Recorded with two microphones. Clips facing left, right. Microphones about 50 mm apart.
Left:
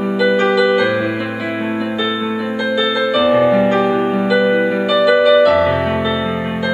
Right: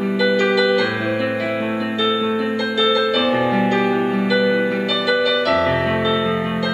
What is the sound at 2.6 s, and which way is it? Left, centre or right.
Music, centre.